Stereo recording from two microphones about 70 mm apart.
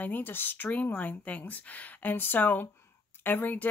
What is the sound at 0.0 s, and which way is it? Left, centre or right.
Speech, left.